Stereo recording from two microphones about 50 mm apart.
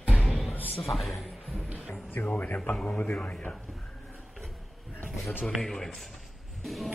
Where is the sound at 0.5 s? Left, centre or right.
Left.